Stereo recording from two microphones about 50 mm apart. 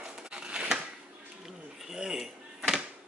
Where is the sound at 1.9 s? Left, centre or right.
Centre.